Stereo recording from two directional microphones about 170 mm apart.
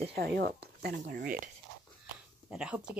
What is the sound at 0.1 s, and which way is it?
Speech, 65° right (ahead or behind).